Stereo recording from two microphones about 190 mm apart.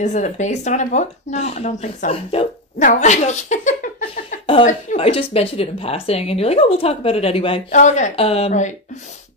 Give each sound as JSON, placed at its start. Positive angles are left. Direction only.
{"t": 0.0, "sound": "speech", "side_deg": 40}
{"t": 7.7, "sound": "speech", "side_deg": 40}